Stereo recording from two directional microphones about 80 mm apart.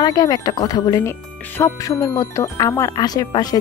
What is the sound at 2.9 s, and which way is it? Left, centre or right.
Speech, left.